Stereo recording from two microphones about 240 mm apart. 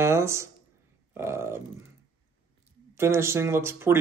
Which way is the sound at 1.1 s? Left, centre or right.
Centre.